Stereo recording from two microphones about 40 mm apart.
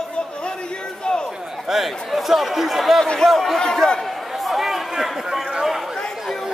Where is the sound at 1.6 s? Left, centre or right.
Centre.